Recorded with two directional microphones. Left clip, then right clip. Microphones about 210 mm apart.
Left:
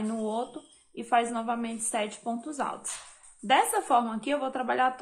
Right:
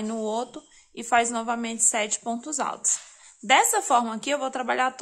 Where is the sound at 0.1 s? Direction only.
30° right (ahead or behind).